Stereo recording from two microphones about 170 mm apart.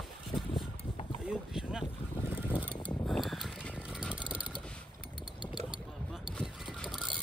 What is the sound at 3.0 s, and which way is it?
Mechanisms, centre (ahead or behind).